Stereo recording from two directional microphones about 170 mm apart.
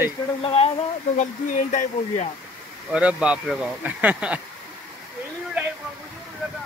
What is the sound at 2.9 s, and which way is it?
Speech, 5° right (ahead or behind).